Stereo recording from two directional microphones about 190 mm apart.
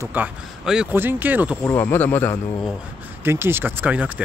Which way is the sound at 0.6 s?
5° right (ahead or behind).